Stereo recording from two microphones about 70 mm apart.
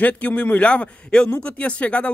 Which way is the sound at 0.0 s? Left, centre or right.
Left.